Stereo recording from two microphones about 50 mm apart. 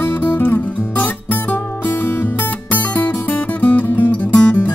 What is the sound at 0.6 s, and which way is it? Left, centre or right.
Music, left.